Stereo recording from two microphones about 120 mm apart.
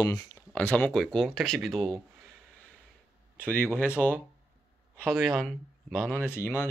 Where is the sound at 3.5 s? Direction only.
15° left (ahead or behind).